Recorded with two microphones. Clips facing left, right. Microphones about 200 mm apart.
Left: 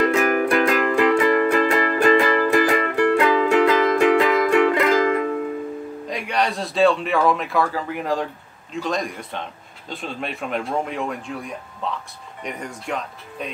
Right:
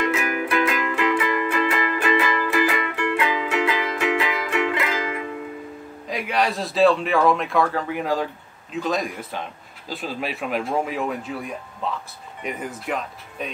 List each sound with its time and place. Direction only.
0.0 s music: 45° left (ahead or behind)
6.0 s a man's voice: centre (ahead or behind)